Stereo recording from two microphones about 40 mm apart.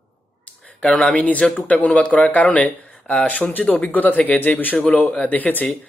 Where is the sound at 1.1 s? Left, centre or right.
Left.